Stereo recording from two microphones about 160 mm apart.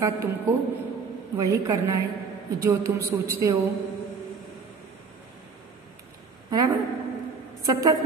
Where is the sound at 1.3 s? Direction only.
20° right (ahead or behind).